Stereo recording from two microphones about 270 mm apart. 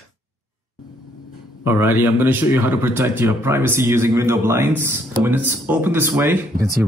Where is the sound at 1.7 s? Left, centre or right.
Centre.